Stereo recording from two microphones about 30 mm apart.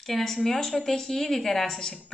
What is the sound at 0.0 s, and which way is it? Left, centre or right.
A woman's voice, centre.